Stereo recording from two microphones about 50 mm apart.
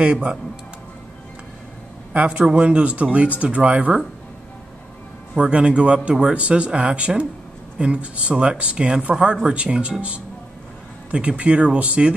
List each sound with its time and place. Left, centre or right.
0.0 s speech: right
2.1 s speech: right
5.4 s speech: right